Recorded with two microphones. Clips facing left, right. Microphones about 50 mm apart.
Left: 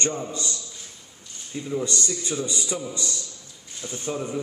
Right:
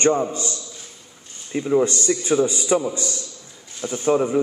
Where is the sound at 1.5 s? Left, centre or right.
Right.